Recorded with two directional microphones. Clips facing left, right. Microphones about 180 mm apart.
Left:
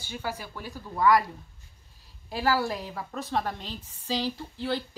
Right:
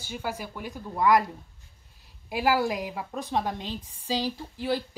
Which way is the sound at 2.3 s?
15° right (ahead or behind).